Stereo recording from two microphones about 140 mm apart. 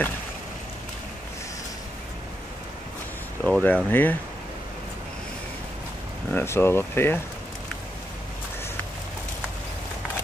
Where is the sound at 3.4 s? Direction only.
10° left (ahead or behind).